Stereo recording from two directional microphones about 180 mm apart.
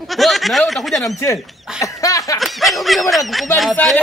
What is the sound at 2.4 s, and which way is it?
Speech, centre (ahead or behind).